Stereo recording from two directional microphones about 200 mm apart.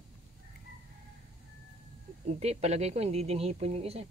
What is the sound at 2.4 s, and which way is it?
Speech, 30° right (ahead or behind).